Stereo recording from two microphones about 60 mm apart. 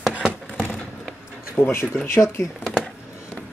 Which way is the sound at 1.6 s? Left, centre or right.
Left.